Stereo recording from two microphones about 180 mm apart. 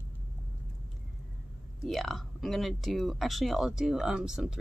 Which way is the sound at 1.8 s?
Centre (ahead or behind).